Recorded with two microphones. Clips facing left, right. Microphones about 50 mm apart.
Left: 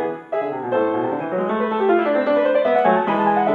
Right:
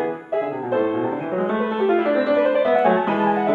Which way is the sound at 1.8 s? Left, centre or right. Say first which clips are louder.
Left 1 dB; left.